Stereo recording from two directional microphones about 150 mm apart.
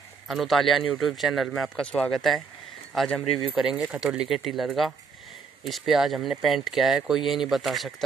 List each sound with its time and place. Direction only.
0.3 s speech: centre (ahead or behind)